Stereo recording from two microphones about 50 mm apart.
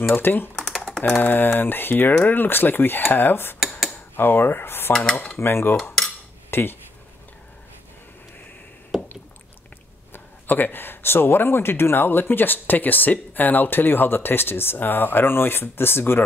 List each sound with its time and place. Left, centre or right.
0.1 s speech: left
8.9 s a sound: centre
10.1 s speech: left